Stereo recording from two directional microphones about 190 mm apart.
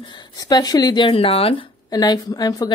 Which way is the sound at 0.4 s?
20° left (ahead or behind).